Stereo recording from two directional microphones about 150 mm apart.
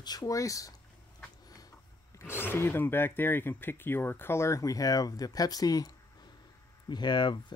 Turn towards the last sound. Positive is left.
turn(degrees=30)  # may be behind; listen again after turning